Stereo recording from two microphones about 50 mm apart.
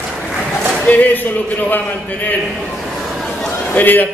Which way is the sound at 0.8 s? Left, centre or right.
Left.